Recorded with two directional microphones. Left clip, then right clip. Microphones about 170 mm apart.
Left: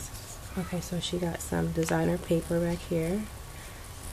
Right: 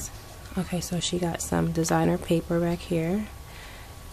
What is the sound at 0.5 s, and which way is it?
Speech, 30° right (ahead or behind).